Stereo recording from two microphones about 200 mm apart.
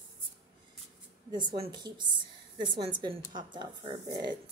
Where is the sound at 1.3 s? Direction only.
25° right (ahead or behind).